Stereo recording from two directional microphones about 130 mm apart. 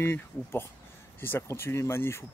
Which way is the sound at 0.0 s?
20° left (ahead or behind).